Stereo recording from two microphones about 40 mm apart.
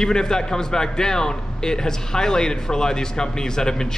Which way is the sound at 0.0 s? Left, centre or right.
Centre.